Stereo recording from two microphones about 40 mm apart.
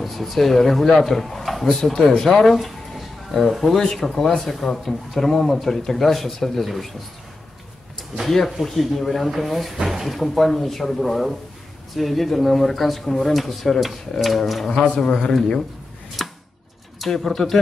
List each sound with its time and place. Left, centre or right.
0.0 s speech: centre
2.4 s a sound: centre
3.5 s speech: centre
8.3 s speech: centre
15.2 s speech: centre
16.2 s chopping: centre
17.0 s speech: centre
17.4 s speech: centre